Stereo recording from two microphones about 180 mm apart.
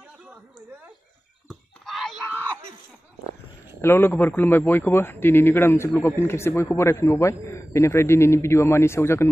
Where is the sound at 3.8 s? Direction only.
15° left (ahead or behind).